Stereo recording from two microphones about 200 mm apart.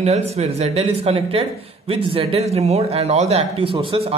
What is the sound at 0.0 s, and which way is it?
Speech, 35° right (ahead or behind).